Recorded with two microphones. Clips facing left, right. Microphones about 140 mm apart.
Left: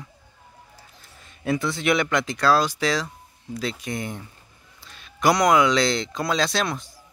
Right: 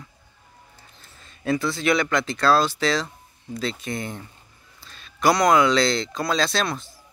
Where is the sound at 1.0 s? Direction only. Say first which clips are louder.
Right 1 dB; 15° left (ahead or behind).